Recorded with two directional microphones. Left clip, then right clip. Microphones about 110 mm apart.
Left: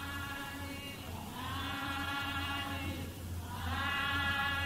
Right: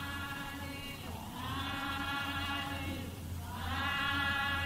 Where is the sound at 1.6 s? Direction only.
25° left (ahead or behind).